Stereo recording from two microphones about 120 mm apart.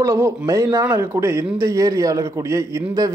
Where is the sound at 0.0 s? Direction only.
25° right (ahead or behind).